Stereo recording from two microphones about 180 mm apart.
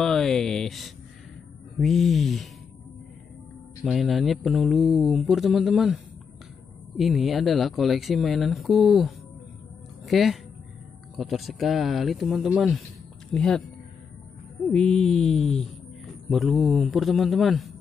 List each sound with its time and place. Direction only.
0.0 s speech: 5° left (ahead or behind)
3.8 s speech: centre (ahead or behind)
7.0 s speech: centre (ahead or behind)
14.7 s speech: 5° left (ahead or behind)